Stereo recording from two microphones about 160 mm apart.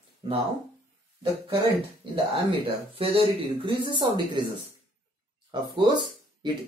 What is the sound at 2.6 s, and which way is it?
Speech, 35° right (ahead or behind).